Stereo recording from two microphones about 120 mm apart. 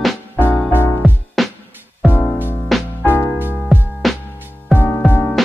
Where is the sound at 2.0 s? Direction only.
15° left (ahead or behind).